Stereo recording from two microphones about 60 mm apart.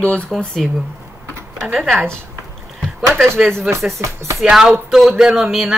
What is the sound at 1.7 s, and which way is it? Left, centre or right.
Speech, centre.